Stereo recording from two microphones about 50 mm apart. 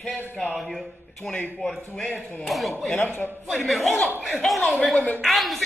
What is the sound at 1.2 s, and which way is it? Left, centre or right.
Speech, centre.